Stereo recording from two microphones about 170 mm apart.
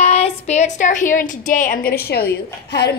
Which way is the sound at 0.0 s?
40° left (ahead or behind).